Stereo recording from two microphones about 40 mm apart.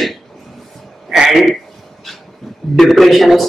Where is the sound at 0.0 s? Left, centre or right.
Centre.